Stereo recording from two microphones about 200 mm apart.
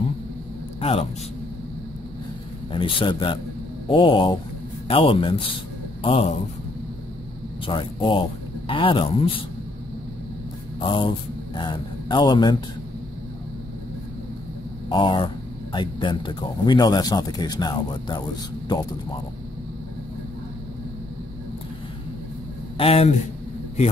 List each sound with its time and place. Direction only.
0.7 s a man's voice: 30° left (ahead or behind)
2.7 s speech: 25° left (ahead or behind)
7.6 s speech: 25° left (ahead or behind)
10.8 s speech: 25° left (ahead or behind)
14.9 s speech: 25° left (ahead or behind)
22.8 s speech: 30° left (ahead or behind)